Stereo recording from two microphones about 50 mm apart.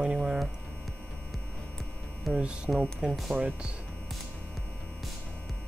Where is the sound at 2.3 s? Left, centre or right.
Centre.